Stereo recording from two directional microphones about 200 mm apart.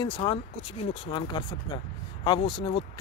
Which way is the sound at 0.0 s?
25° left (ahead or behind).